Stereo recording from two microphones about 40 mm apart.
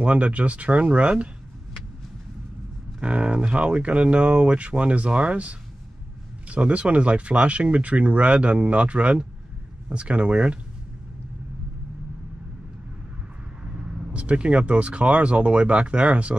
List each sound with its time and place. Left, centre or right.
0.0 s speech: right
3.0 s speech: right
13.7 s speech: right